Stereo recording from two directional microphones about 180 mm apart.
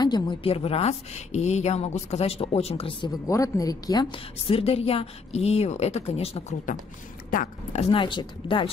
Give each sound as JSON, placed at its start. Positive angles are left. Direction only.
{"t": 0.0, "sound": "a woman's voice", "side_deg": 25}
{"t": 3.3, "sound": "a woman's voice", "side_deg": 20}
{"t": 7.2, "sound": "speech", "side_deg": 50}
{"t": 7.8, "sound": "speech", "side_deg": 30}